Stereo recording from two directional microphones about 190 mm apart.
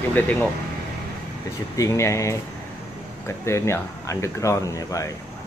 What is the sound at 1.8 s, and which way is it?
Speech, 15° left (ahead or behind).